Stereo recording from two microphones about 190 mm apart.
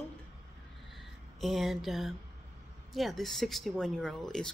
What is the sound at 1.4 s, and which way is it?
Speech, centre (ahead or behind).